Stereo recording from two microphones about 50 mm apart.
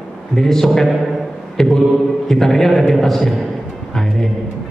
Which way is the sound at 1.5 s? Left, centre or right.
Centre.